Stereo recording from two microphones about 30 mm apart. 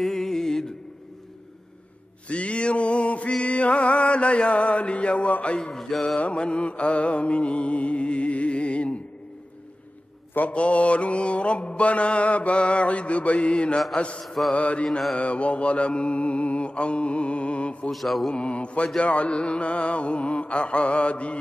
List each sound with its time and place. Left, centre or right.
0.0 s music: centre
2.2 s music: left
5.6 s mantra: centre
6.1 s mantra: left
10.5 s mantra: left
14.2 s mantra: centre
14.5 s mantra: left
17.9 s mantra: centre
18.3 s mantra: left